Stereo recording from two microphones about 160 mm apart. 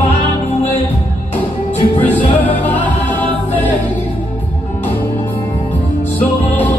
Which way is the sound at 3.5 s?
10° left (ahead or behind).